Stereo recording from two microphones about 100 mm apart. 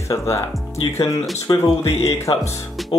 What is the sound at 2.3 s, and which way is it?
Speech, 55° left (ahead or behind).